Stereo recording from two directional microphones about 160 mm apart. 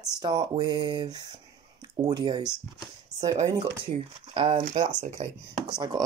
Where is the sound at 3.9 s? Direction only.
35° right (ahead or behind).